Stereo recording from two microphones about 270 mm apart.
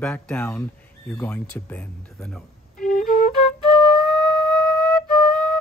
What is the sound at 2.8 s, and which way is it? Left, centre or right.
Flute, left.